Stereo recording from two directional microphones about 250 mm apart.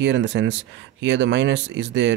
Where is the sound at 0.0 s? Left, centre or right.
Right.